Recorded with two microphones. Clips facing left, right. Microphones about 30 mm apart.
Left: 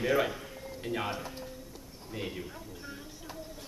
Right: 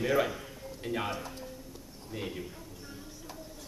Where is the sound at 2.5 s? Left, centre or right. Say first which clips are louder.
Left 2 dB; centre.